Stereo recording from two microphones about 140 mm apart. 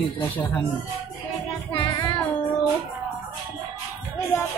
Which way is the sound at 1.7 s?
35° left (ahead or behind).